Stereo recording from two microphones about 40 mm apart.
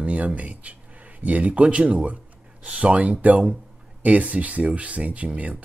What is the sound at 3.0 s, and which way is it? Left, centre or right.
Speech, right.